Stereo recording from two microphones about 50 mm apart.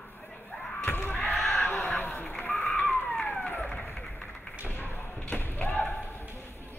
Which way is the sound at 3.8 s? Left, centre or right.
Left.